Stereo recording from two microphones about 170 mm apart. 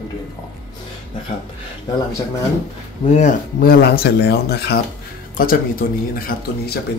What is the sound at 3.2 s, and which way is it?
Speech, 55° left (ahead or behind).